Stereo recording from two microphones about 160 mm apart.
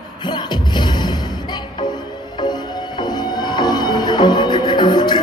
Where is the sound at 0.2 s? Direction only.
30° left (ahead or behind).